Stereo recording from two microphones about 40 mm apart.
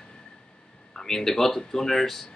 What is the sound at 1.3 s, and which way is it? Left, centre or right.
Speech, centre.